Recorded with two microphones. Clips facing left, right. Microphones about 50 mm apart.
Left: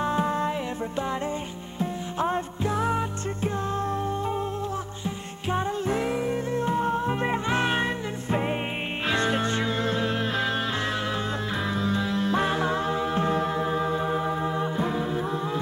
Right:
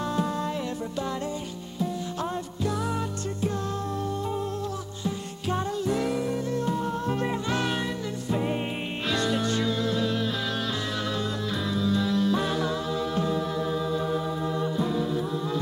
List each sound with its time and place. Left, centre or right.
0.0 s music: left
2.1 s music: left
5.5 s music: left
11.7 s music: left